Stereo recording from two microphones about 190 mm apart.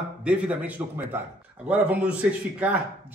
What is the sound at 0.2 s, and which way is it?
Speech, 5° right (ahead or behind).